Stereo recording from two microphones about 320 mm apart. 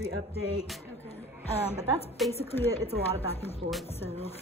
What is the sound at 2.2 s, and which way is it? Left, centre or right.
Speech, centre.